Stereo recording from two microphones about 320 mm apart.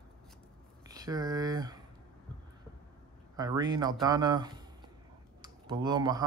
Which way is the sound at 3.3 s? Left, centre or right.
Centre.